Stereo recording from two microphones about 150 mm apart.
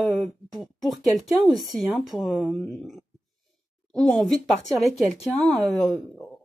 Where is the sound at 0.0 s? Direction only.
Centre (ahead or behind).